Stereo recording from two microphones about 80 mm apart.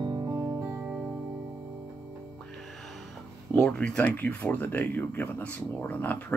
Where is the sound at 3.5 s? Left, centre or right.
Centre.